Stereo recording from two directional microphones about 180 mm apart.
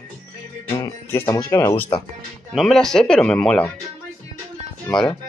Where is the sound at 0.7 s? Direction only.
10° left (ahead or behind).